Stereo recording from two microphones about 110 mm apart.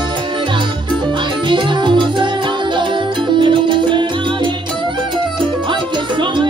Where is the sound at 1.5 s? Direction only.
45° right (ahead or behind).